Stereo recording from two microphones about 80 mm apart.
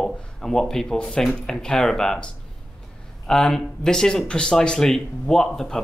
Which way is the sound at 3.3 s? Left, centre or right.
Centre.